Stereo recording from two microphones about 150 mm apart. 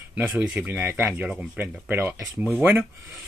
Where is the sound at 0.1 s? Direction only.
10° right (ahead or behind).